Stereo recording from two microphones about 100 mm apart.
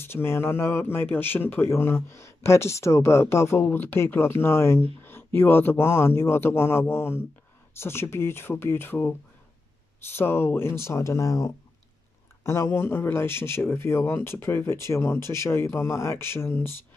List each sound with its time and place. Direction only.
0.0 s speech: 25° left (ahead or behind)
10.1 s speech: 25° left (ahead or behind)